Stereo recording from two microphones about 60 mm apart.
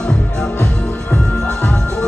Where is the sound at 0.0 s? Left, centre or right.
Centre.